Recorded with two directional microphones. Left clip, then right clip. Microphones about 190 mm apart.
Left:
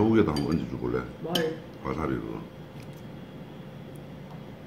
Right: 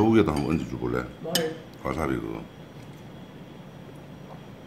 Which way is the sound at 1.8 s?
50° right (ahead or behind).